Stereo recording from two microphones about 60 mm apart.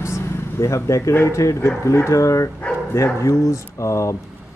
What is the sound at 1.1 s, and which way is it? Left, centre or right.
Speech, left.